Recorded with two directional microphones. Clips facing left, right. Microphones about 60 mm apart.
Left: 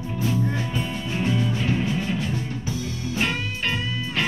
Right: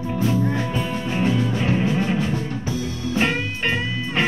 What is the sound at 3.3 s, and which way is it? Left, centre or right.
Music, right.